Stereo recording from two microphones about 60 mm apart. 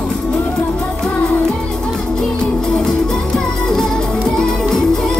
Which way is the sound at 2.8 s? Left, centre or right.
Centre.